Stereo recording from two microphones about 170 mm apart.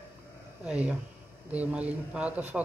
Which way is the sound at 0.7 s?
5° right (ahead or behind).